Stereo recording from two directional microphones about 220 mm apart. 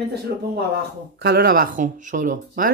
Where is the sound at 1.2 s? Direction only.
45° right (ahead or behind).